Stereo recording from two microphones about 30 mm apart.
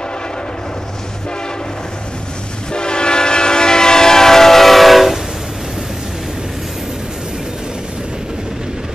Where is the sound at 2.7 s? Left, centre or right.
Left; by 5.2 s centre.